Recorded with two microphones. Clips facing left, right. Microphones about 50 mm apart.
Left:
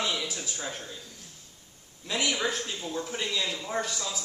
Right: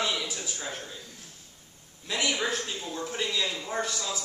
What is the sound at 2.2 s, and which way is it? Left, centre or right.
A man's voice, centre.